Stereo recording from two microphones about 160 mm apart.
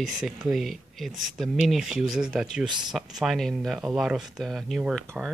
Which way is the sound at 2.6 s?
30° right (ahead or behind).